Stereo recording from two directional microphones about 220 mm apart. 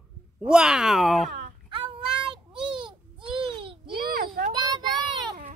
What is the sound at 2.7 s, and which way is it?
Babbling, 20° right (ahead or behind).